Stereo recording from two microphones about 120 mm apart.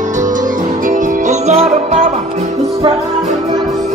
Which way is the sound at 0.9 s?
80° right.